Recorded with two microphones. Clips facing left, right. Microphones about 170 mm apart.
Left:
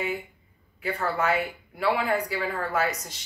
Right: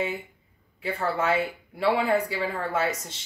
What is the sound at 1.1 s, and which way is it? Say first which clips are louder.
Speech: right 1 dB; 25° right (ahead or behind).